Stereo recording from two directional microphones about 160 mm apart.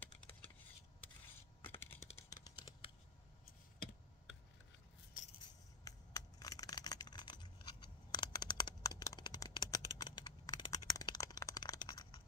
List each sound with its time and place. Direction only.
0.0 s computer keyboard: 10° left (ahead or behind)
1.6 s computer keyboard: 15° left (ahead or behind)
5.9 s a sound: 20° left (ahead or behind)